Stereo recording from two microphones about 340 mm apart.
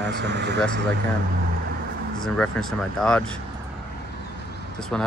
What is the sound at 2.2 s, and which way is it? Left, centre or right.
Speech, centre.